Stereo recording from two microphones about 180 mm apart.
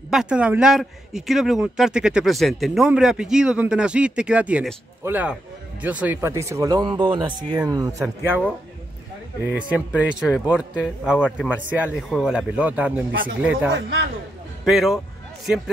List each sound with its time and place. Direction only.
0.1 s speech: 5° right (ahead or behind)
9.6 s speech: 5° right (ahead or behind)
11.2 s a man's voice: 10° left (ahead or behind)
11.7 s a man's voice: 5° right (ahead or behind)